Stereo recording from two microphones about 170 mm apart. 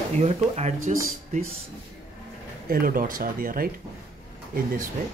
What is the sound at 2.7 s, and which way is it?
Speech, 60° right (ahead or behind).